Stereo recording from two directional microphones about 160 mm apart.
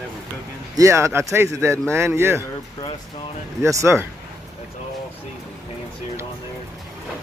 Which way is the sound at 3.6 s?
15° right (ahead or behind).